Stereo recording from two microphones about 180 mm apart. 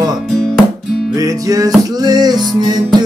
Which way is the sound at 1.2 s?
20° right (ahead or behind).